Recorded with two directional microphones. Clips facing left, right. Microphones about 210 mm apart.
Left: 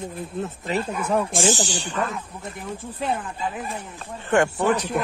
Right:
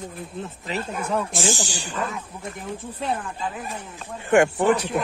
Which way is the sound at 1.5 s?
10° right (ahead or behind).